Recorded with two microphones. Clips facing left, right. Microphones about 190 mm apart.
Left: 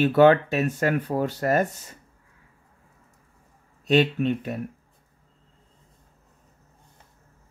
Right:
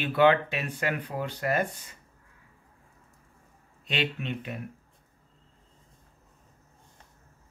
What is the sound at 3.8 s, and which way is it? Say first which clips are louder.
Speech: left 11 dB; 45° left (ahead or behind).